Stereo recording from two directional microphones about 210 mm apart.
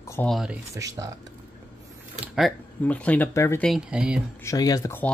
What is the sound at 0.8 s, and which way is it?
Speech, 15° right (ahead or behind).